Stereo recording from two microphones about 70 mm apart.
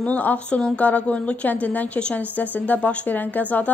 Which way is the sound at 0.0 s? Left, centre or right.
Left.